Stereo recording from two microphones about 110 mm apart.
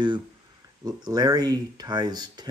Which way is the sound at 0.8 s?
35° right (ahead or behind).